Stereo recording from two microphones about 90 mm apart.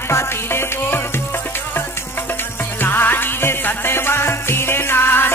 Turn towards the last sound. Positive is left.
turn(degrees=25)  # may be behind; listen again after turning